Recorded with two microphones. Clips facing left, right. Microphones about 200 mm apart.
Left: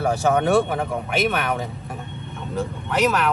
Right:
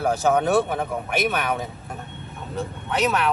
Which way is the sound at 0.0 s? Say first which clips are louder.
Left 1 dB; centre (ahead or behind).